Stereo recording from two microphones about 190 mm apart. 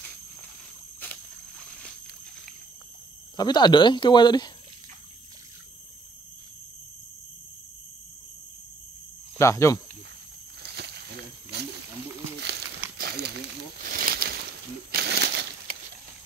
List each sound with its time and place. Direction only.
3.3 s speech: 20° left (ahead or behind)
9.4 s speech: 15° left (ahead or behind)
10.6 s a sound: 60° right (ahead or behind)